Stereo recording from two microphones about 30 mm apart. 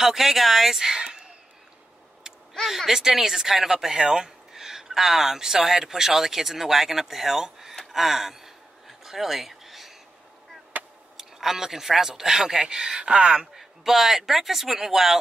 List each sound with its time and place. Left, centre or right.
0.0 s speech: centre
1.0 s whispering: right
2.6 s speech: centre
2.9 s speech: centre
7.9 s gasp: centre
9.0 s a sound: centre
11.1 s speech: centre
13.0 s speech: right
13.6 s speech: centre